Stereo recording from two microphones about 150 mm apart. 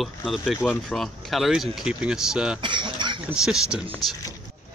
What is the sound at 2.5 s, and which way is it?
Cutlery, 35° right (ahead or behind).